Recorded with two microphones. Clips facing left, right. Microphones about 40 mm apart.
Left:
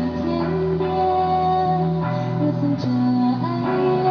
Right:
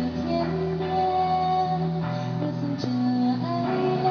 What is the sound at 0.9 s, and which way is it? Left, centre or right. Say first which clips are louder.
Music: left 2 dB; centre.